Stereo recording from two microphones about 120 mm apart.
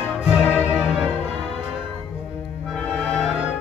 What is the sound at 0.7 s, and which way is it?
Music, 5° right (ahead or behind).